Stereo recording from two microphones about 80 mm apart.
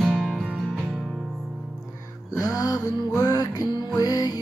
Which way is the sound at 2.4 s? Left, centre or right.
Left.